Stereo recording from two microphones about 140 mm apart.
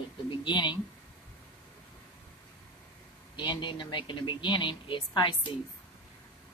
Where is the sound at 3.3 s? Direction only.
35° left (ahead or behind).